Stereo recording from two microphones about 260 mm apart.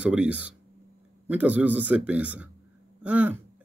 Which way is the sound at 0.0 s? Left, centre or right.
Centre.